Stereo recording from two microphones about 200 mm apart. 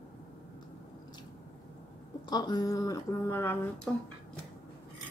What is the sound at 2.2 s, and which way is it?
Speech, 20° left (ahead or behind).